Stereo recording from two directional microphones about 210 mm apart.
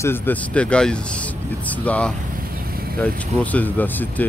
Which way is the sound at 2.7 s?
45° right (ahead or behind).